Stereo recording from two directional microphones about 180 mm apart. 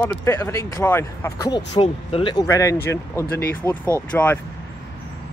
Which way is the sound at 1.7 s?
35° left (ahead or behind).